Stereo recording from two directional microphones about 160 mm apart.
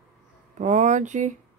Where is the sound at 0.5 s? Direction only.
50° right (ahead or behind).